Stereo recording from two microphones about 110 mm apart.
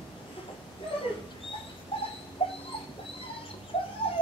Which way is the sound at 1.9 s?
55° left (ahead or behind).